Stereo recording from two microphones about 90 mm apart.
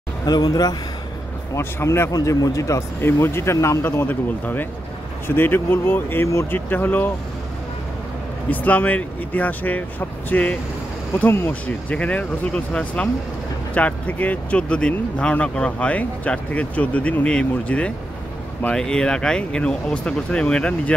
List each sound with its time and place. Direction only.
0.2 s speech: 45° left (ahead or behind)
1.6 s speech: 25° left (ahead or behind)
2.1 s speech: 40° left (ahead or behind); by 7.1 s 20° left (ahead or behind)
8.5 s speech: 20° left (ahead or behind)